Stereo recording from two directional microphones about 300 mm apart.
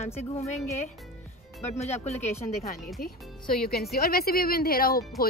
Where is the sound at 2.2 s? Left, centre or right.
Centre.